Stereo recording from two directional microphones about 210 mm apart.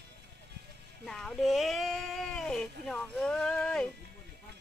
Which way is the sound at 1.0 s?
Centre (ahead or behind).